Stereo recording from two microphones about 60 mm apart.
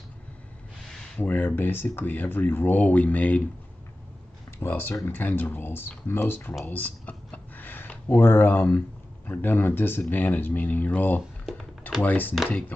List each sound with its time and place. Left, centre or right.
1.2 s speech: left
4.6 s speech: left
6.6 s a sound: left
9.3 s speech: left